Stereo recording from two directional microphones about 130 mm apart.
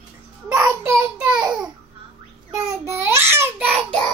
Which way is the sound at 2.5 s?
20° right (ahead or behind).